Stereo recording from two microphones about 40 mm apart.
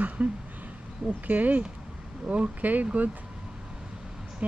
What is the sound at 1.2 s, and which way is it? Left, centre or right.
Speech, right.